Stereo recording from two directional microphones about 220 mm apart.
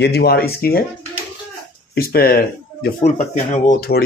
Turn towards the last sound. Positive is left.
turn(degrees=40)  # may be behind; listen again after turning